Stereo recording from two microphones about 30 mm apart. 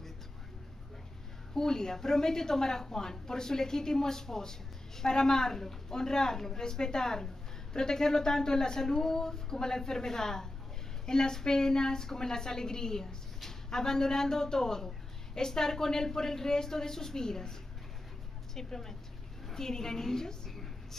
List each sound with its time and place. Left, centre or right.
1.5 s a woman's voice: centre